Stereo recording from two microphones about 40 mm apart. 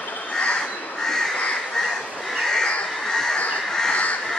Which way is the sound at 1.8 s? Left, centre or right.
Centre.